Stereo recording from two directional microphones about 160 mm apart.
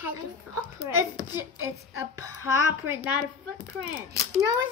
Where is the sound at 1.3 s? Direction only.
15° right (ahead or behind).